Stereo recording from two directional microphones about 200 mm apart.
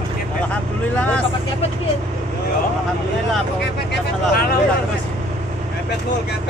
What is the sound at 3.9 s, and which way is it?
Speech, 50° left (ahead or behind).